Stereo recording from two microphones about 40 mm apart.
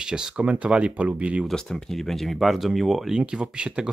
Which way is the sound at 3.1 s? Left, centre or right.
Right.